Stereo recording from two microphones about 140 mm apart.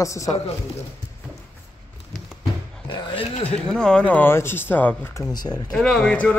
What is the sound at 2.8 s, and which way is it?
Speech, 35° left (ahead or behind).